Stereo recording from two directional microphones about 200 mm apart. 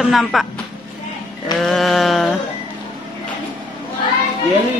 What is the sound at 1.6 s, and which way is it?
Speech, centre (ahead or behind).